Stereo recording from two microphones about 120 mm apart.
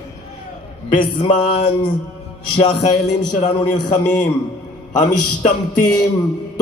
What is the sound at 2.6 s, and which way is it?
Speech, 75° left (ahead or behind).